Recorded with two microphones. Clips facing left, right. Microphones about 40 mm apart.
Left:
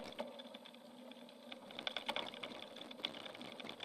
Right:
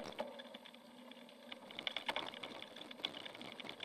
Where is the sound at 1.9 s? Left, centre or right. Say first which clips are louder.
Right 1 dB; right.